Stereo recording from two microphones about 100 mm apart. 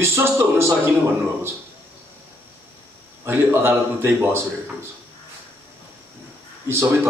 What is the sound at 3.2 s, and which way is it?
A man's voice, 25° right (ahead or behind).